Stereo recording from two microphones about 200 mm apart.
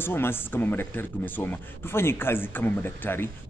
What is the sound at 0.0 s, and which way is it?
Speech, 10° left (ahead or behind).